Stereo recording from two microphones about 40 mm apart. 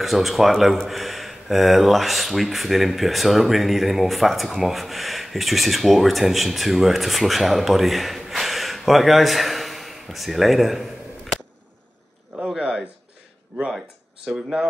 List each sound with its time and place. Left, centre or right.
0.0 s speech: centre
12.5 s speech: centre
14.2 s speech: centre